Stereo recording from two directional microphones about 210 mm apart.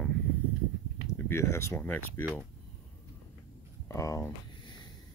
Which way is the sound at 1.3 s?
15° left (ahead or behind).